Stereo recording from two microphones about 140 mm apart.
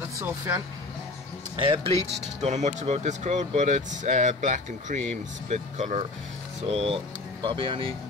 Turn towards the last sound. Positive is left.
turn(degrees=-40)  # may be behind; listen again after turning